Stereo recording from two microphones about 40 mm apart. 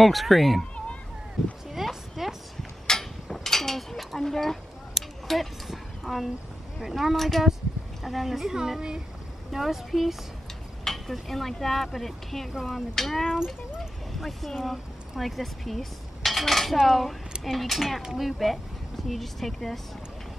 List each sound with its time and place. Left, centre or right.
0.0 s speech: centre
1.7 s clip-clop: centre
2.9 s a sound: centre
4.9 s a sound: centre
6.8 s speech: centre
7.2 s speech: centre
10.8 s speech: centre